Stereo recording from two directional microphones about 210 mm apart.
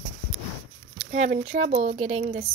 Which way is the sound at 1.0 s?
35° right (ahead or behind).